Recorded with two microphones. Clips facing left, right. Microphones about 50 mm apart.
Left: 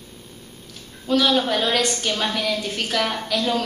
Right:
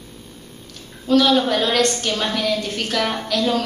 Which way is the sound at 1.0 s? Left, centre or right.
Centre.